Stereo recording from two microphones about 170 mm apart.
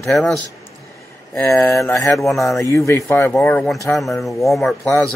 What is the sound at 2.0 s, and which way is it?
Speech, centre (ahead or behind).